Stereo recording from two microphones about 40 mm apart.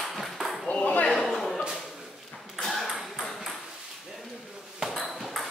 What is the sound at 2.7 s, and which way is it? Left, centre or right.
Ping, centre.